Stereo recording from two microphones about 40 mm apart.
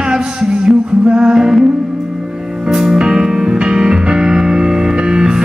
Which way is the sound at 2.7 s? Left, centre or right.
Centre.